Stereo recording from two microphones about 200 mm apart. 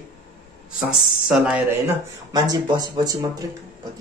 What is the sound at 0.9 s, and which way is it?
Speech, centre (ahead or behind).